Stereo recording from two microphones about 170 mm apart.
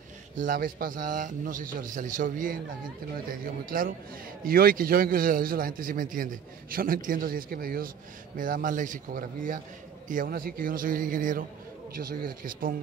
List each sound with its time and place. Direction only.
0.4 s a man's voice: 55° right (ahead or behind)